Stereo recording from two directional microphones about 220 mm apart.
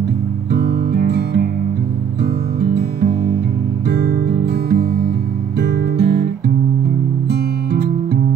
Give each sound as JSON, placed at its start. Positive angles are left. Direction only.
{"t": 0.5, "sound": "music", "side_deg": -50}